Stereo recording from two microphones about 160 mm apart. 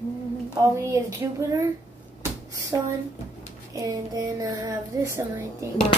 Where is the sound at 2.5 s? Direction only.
20° right (ahead or behind).